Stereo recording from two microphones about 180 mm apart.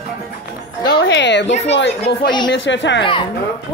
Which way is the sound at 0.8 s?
80° left.